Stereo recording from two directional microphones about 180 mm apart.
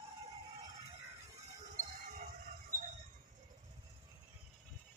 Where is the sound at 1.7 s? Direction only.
45° right (ahead or behind).